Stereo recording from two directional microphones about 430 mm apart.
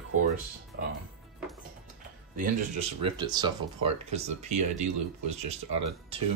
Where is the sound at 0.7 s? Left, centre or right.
Right.